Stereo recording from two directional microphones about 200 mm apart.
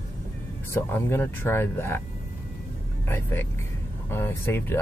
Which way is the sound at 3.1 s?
10° left (ahead or behind).